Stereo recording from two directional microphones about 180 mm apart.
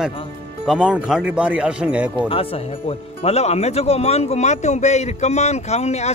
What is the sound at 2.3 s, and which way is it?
Speech, 30° left (ahead or behind).